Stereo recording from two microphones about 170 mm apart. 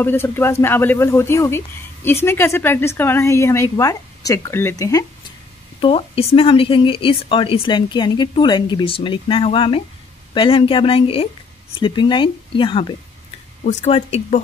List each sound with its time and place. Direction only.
0.0 s speech: 15° left (ahead or behind)
5.8 s a woman's voice: 35° left (ahead or behind)
13.7 s a woman's voice: 40° left (ahead or behind)